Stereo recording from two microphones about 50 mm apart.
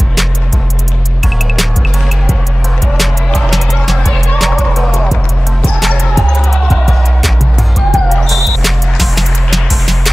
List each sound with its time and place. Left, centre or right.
3.3 s music: centre